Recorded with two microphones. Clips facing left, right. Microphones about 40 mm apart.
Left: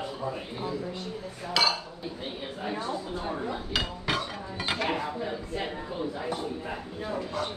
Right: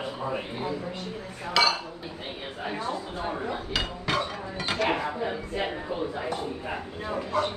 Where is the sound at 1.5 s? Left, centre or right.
Centre.